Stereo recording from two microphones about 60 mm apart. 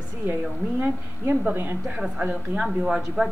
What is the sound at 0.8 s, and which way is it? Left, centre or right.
Speech, right.